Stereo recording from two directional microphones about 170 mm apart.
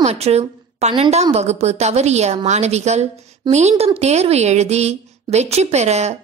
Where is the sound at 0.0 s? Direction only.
40° right (ahead or behind).